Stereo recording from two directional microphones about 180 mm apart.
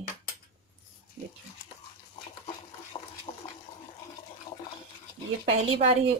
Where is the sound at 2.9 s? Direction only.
25° left (ahead or behind).